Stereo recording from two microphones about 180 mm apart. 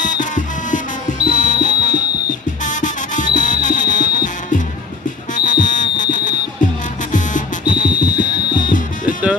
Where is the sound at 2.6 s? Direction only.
45° left (ahead or behind).